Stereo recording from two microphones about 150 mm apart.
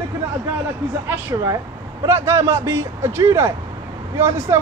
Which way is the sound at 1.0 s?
15° right (ahead or behind).